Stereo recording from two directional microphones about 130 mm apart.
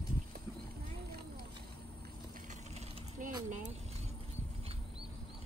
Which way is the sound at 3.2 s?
85° right.